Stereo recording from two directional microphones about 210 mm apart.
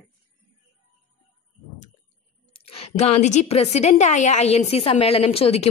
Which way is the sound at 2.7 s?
30° left (ahead or behind).